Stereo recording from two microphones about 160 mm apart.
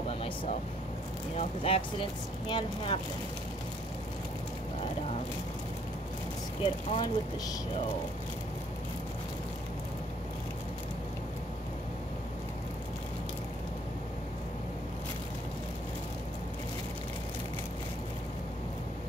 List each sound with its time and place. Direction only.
1.3 s speech: 40° left (ahead or behind)
6.6 s speech: 35° left (ahead or behind)